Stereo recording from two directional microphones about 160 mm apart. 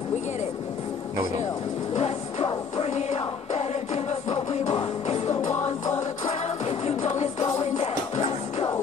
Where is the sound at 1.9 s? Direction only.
40° left (ahead or behind).